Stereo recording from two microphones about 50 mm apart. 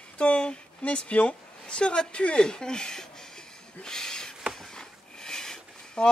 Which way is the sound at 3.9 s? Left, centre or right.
Centre.